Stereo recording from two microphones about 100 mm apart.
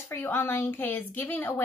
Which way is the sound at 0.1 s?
20° left (ahead or behind).